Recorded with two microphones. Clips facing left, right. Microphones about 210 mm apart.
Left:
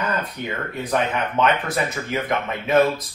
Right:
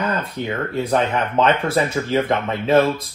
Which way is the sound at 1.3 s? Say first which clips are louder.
Right 4 dB; 30° right (ahead or behind).